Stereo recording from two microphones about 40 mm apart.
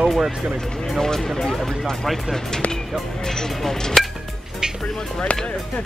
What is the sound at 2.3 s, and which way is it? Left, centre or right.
Speech, centre.